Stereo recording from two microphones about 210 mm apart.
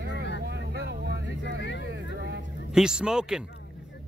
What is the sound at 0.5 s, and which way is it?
Vehicle, 55° right (ahead or behind).